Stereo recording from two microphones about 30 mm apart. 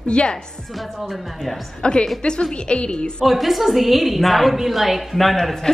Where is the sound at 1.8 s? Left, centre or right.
Left.